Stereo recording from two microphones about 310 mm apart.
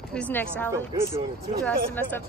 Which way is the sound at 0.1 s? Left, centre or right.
Centre.